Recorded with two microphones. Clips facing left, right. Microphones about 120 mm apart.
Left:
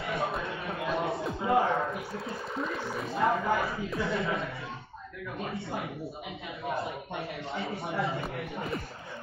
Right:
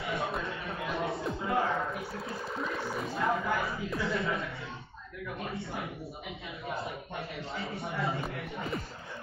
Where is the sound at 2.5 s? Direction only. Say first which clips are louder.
Left 1 dB; centre (ahead or behind).